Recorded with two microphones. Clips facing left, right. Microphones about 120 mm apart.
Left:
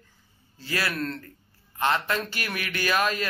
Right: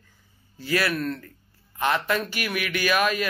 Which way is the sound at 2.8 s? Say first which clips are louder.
Right 2 dB; 25° left (ahead or behind).